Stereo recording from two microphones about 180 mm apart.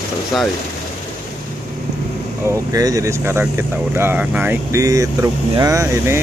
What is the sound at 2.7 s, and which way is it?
Speech, 20° right (ahead or behind).